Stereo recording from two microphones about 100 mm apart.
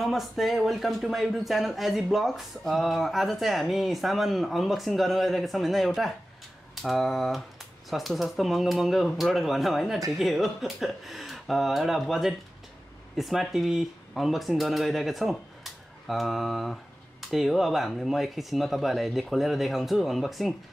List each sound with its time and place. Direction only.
0.0 s speech: centre (ahead or behind)
6.7 s typing: centre (ahead or behind)
7.9 s speech: centre (ahead or behind)